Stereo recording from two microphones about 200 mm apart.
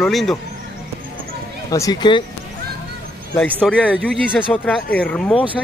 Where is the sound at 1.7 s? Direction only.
20° left (ahead or behind).